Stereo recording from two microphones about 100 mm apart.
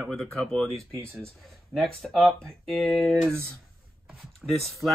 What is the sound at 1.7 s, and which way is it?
Speech, 5° left (ahead or behind).